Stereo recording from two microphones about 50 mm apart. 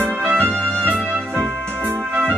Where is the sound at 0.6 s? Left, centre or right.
Left.